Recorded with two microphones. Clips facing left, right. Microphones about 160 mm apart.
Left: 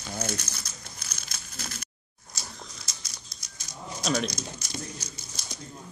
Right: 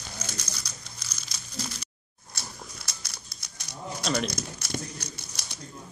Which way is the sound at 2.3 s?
60° right (ahead or behind).